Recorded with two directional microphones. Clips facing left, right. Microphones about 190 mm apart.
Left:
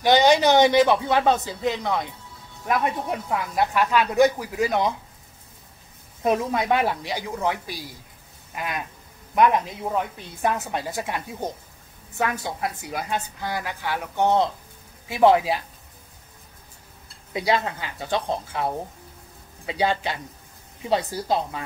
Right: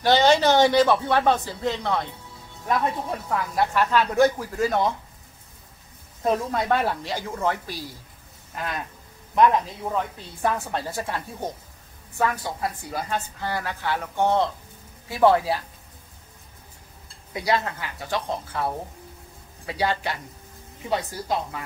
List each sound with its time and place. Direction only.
0.0 s a woman's voice: 15° left (ahead or behind)
6.2 s a woman's voice: 15° left (ahead or behind)
17.3 s speech: 20° left (ahead or behind)